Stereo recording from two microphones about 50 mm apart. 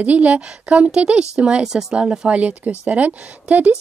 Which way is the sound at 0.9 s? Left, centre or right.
Centre.